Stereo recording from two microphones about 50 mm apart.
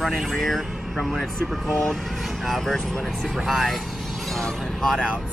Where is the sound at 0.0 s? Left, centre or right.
Centre.